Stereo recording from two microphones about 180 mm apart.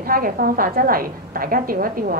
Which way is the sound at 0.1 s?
50° right (ahead or behind).